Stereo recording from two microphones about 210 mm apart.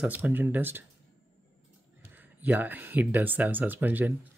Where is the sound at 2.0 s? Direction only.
10° right (ahead or behind).